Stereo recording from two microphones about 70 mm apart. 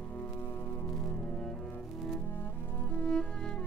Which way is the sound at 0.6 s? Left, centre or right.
Left.